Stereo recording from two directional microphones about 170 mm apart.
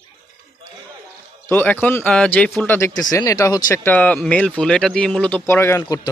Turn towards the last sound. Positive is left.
turn(degrees=15)  # may be behind; listen again after turning